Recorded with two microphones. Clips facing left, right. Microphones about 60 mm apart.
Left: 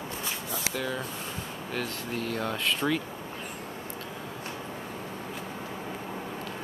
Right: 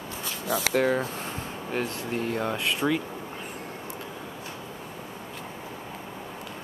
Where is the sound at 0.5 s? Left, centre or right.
Right.